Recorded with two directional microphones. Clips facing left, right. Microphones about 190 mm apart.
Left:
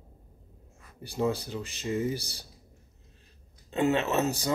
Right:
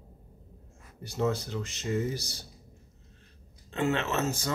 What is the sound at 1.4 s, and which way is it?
Speech, 15° left (ahead or behind).